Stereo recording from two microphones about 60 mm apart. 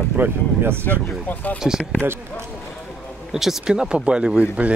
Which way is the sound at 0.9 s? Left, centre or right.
Left.